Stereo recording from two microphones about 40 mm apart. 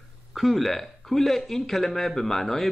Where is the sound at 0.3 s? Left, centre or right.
Centre.